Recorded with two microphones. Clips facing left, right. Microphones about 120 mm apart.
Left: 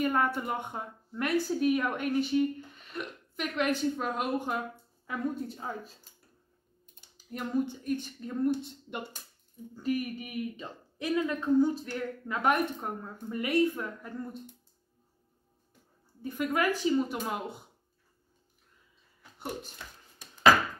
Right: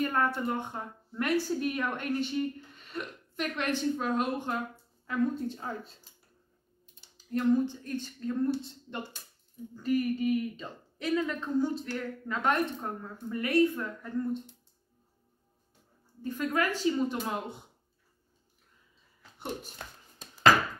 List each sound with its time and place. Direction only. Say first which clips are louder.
0.0 s a woman's voice: left 1 dB; 10° left (ahead or behind)
7.2 s speech: right 5 dB; 15° left (ahead or behind)
16.2 s speech: even; 10° left (ahead or behind)
19.8 s speech: right 2 dB; 45° right (ahead or behind)